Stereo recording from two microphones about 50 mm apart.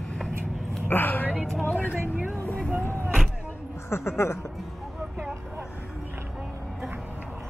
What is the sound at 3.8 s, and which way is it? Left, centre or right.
Speech, left.